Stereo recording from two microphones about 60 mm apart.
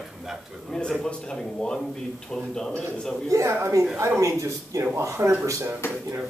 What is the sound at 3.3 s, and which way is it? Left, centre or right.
Speech, right.